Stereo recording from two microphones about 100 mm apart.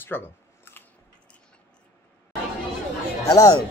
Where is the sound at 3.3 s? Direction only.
40° left (ahead or behind).